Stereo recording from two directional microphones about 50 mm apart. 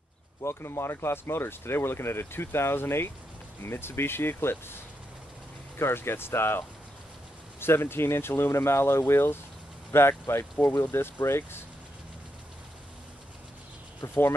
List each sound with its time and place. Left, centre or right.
0.4 s speech: left
5.8 s speech: left
7.6 s speech: left
14.0 s speech: left